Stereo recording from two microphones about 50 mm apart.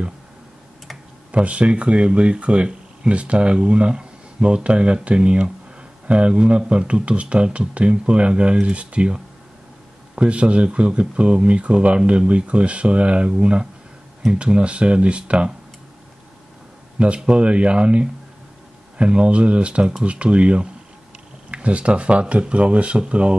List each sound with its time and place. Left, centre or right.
1.3 s speech: right
17.0 s speech: right